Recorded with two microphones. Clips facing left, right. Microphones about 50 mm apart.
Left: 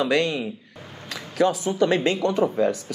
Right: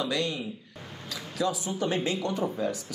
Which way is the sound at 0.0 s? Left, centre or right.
Left.